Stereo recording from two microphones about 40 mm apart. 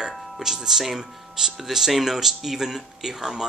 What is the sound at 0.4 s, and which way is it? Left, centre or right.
Speech, centre.